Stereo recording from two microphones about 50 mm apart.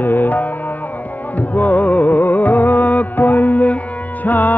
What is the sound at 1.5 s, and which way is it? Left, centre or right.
Music, left.